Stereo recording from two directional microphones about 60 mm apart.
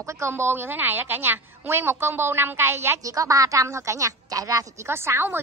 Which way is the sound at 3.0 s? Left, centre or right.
Right.